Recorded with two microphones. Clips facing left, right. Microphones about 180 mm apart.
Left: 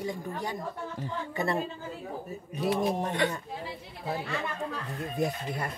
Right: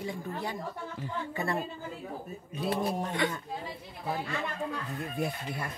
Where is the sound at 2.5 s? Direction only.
20° left (ahead or behind).